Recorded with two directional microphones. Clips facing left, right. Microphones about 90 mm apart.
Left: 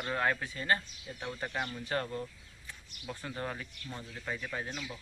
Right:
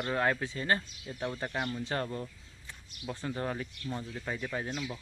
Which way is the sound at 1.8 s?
30° right (ahead or behind).